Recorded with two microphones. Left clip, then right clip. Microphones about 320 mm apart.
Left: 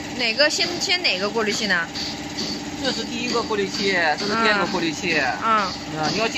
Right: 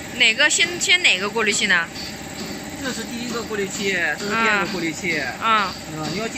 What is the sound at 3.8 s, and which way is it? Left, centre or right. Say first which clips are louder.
Speech: left 2 dB; centre.